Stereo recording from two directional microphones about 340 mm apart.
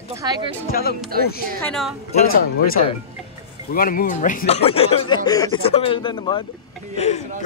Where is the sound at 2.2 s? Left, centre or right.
Left.